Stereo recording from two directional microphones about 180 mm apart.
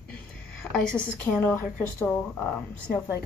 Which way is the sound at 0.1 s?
5° left (ahead or behind).